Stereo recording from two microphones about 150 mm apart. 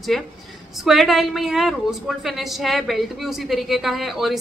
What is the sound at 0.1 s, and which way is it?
A woman's voice, centre (ahead or behind).